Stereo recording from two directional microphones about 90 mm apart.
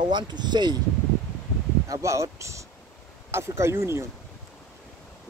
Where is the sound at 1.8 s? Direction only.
35° right (ahead or behind).